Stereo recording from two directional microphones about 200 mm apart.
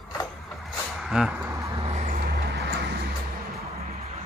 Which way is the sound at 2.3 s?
55° right (ahead or behind).